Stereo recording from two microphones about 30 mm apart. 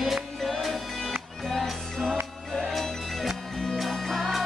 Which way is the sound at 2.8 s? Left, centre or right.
Centre.